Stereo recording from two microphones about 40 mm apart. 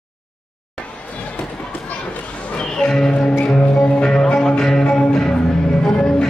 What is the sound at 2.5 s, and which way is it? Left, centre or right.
Music, centre.